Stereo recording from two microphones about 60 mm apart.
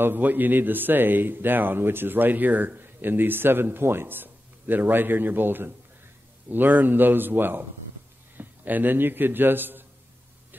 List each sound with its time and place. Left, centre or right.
0.0 s a man's voice: right